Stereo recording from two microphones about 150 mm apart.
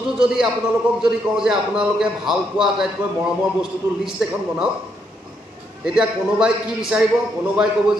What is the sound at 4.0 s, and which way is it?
Speech, 5° right (ahead or behind).